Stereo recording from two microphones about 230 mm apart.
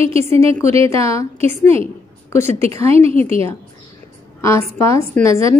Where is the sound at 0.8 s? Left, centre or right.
Centre.